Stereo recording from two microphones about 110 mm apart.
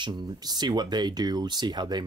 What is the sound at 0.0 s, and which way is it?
Speech, 40° right (ahead or behind).